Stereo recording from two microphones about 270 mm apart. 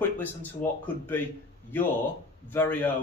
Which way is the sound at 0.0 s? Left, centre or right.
Centre.